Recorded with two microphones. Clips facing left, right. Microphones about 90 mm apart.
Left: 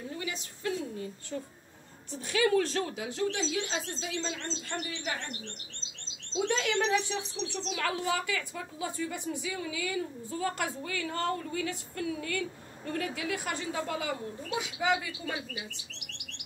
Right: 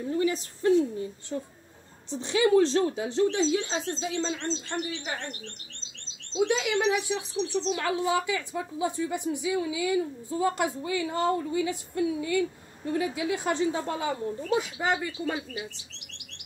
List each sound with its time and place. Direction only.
0.1 s a sound: 35° right (ahead or behind)
1.3 s a woman's voice: 25° right (ahead or behind)
6.4 s speech: 10° right (ahead or behind)
7.6 s a woman's voice: 25° right (ahead or behind)